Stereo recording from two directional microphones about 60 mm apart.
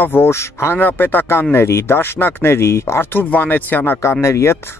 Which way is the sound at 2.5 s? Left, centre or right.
Left.